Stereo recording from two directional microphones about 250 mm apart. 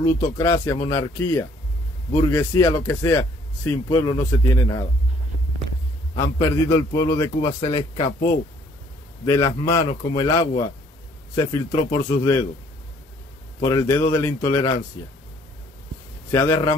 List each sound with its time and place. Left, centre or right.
0.0 s speech: centre
2.3 s speech: centre
6.1 s speech: centre
9.2 s speech: centre
10.4 s a man's voice: left
11.3 s speech: centre
13.7 s speech: centre
16.3 s speech: centre